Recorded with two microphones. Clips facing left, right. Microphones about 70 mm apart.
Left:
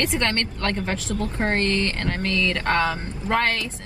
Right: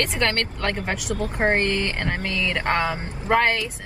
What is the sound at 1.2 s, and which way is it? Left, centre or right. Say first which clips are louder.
Speech: right 3 dB; right.